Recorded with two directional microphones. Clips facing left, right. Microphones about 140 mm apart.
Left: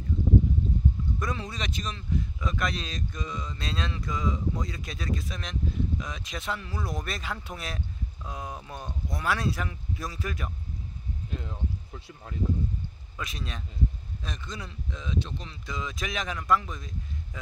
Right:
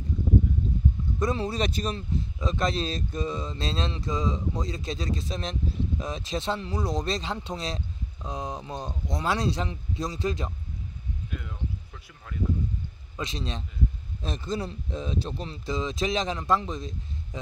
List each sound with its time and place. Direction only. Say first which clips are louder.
1.2 s speech: right 10 dB; 30° right (ahead or behind)
11.2 s a sound: left 1 dB; 30° left (ahead or behind)
13.1 s speech: right 5 dB; 25° right (ahead or behind)